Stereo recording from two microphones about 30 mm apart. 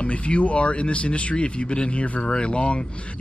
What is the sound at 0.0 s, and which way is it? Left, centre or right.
Speech, left.